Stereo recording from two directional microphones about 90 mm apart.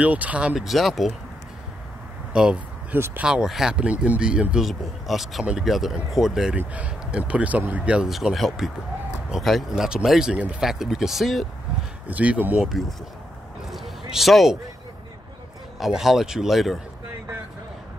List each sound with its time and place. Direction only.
0.0 s speech: 15° right (ahead or behind)
0.6 s speech: centre (ahead or behind)
2.3 s speech: 10° right (ahead or behind)
6.6 s speech: 15° right (ahead or behind)
8.1 s speech: 5° right (ahead or behind)
12.1 s speech: 15° right (ahead or behind)
12.6 s speech: centre (ahead or behind)
13.6 s a sound: centre (ahead or behind)
15.8 s speech: 5° right (ahead or behind)